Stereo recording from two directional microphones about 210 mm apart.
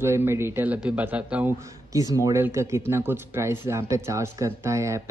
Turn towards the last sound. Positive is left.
turn(degrees=-15)  # may be behind; listen again after turning